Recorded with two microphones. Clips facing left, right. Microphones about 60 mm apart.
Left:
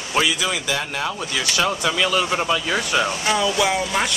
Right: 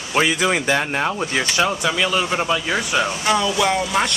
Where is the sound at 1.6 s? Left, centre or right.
Centre.